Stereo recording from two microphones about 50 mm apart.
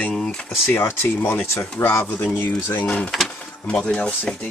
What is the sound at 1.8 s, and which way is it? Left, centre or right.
Speech, left.